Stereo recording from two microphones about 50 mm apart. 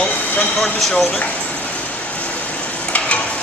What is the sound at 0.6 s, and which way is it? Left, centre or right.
Speech, centre.